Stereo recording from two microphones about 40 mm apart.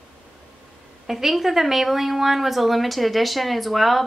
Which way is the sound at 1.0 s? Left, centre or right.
Centre.